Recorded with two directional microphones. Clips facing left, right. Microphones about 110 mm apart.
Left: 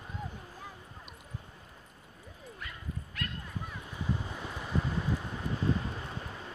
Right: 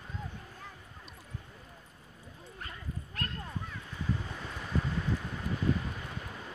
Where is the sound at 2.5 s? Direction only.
35° right (ahead or behind).